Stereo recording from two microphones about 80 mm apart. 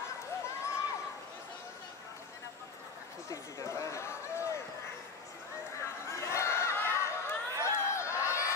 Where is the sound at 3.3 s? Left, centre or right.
Left.